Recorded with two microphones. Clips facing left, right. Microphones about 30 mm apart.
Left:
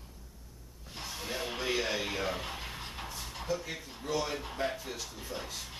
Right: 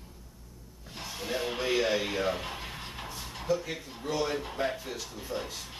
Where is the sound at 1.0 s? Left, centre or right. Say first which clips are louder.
Right 4 dB; centre.